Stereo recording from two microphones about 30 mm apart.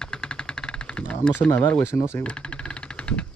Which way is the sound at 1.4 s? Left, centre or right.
Left.